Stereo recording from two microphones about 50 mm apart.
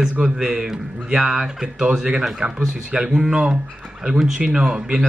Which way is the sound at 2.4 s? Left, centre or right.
Right.